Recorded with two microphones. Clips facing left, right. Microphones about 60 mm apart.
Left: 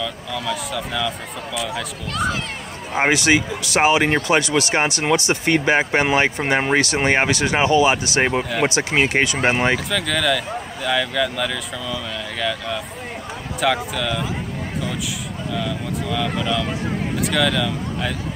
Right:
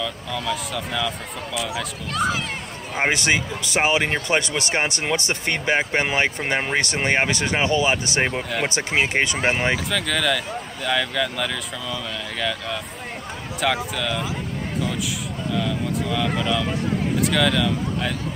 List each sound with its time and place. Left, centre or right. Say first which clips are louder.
0.0 s speech: left 1 dB; centre
3.0 s speech: left 4 dB; centre
8.5 s speech: left 4 dB; centre
9.4 s speech: left 3 dB; left
9.8 s speech: left 2 dB; centre
15.5 s speech: right 1 dB; centre